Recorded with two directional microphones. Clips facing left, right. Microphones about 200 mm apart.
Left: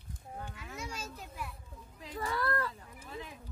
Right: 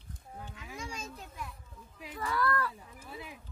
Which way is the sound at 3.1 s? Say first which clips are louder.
Left 1 dB; 10° right (ahead or behind).